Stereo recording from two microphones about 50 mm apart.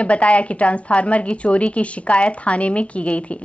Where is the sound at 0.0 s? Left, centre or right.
Left.